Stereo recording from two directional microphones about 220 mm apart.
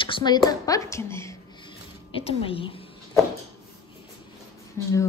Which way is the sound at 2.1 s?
25° left (ahead or behind).